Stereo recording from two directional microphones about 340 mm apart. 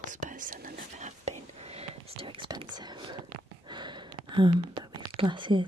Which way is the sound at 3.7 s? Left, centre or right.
Centre.